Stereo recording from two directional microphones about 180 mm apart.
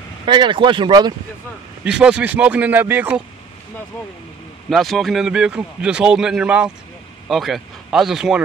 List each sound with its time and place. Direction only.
0.2 s speech: 25° right (ahead or behind)
1.9 s speech: 5° right (ahead or behind)
4.6 s a man's voice: centre (ahead or behind)